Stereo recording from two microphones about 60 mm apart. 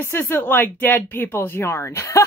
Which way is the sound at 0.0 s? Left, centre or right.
Left.